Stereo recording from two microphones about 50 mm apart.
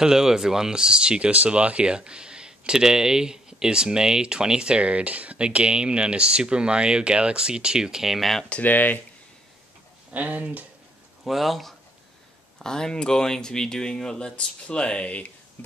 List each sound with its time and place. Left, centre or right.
0.0 s speech: centre
8.5 s speech: left
10.1 s speech: right
11.2 s speech: centre
12.5 s speech: centre